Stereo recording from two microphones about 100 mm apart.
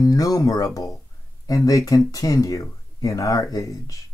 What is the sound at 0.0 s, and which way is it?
Speech, 35° left (ahead or behind).